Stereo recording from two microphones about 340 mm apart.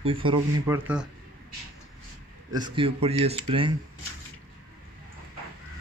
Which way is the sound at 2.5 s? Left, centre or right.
Centre.